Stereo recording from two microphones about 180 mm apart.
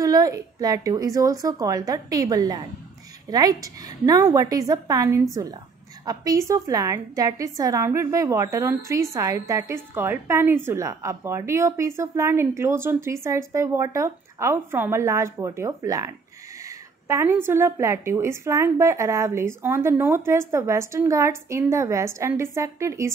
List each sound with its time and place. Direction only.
0.0 s a woman's voice: 20° right (ahead or behind)